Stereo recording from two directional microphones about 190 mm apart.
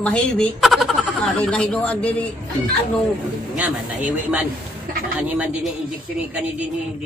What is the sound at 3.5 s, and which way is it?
Speech, 10° right (ahead or behind).